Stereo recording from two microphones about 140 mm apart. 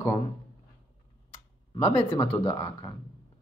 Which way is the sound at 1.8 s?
40° left (ahead or behind).